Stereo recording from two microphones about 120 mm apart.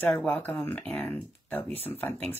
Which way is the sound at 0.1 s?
5° left (ahead or behind).